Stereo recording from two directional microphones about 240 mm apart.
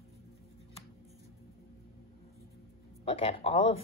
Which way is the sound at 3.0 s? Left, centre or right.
Left.